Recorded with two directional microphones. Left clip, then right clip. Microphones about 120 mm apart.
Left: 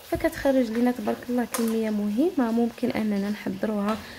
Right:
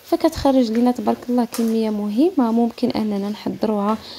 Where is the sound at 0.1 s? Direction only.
45° right (ahead or behind).